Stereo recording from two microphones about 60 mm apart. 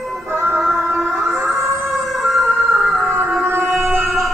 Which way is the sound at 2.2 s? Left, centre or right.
Centre.